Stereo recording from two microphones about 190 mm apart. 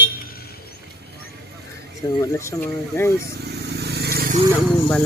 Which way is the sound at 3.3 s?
60° right (ahead or behind).